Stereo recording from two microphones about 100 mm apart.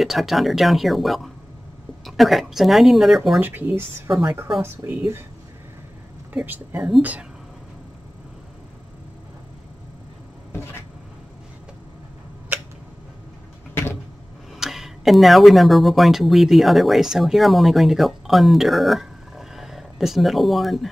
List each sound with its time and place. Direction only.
0.0 s speech: centre (ahead or behind)
3.3 s speech: 20° right (ahead or behind)
4.1 s a woman's voice: 55° right (ahead or behind)
4.6 s speech: 25° right (ahead or behind)
6.3 s speech: 15° right (ahead or behind)
14.5 s speech: 5° right (ahead or behind)